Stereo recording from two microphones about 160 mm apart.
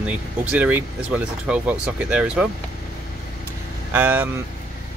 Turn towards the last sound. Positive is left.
turn(degrees=-15)  # may be behind; listen again after turning